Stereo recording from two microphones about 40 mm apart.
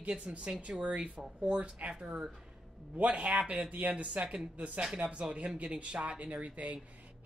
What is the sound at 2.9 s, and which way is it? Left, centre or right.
Speech, right.